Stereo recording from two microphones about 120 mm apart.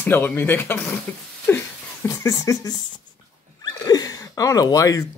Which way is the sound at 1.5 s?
15° left (ahead or behind).